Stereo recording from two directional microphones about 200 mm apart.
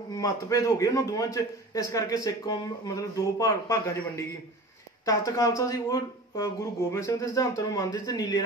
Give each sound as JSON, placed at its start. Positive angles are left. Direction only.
{"t": 0.1, "sound": "a man's voice", "side_deg": 15}
{"t": 5.0, "sound": "a man's voice", "side_deg": 15}